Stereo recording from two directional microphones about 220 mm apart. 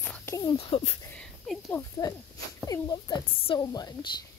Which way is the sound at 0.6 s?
25° left (ahead or behind).